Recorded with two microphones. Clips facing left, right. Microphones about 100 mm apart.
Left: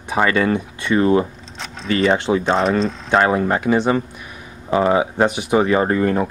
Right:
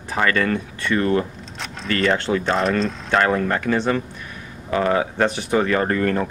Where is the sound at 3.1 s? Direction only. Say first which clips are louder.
Left 3 dB; 15° left (ahead or behind).